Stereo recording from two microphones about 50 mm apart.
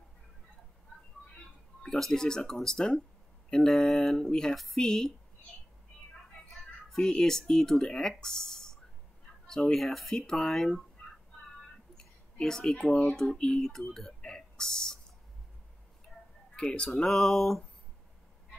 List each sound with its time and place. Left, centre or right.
1.3 s speech: centre
6.9 s speech: centre
12.4 s speech: centre
16.5 s speech: centre
17.1 s a sound: centre